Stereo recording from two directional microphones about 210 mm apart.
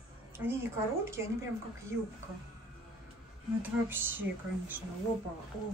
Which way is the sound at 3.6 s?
10° right (ahead or behind).